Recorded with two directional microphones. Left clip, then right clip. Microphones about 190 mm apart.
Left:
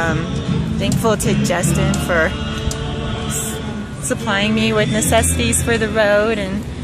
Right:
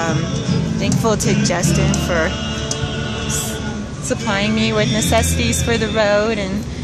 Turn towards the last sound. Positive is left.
turn(degrees=0)  # may be behind; listen again after turning